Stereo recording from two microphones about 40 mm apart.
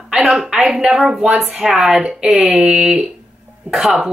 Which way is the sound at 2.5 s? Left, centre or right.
Right.